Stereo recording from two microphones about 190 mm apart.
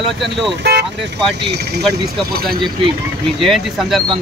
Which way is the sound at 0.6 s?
60° right (ahead or behind).